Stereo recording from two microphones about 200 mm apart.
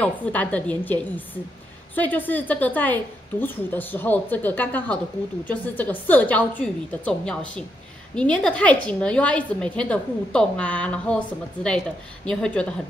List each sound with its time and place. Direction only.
0.0 s a woman's voice: 5° left (ahead or behind)
2.0 s a woman's voice: 10° left (ahead or behind)
12.3 s a woman's voice: 5° left (ahead or behind)